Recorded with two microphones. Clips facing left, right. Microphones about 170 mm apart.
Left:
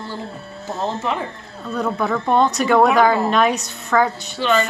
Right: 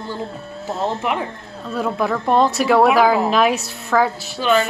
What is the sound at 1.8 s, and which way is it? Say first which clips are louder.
A woman's voice: right 1 dB; 5° right (ahead or behind).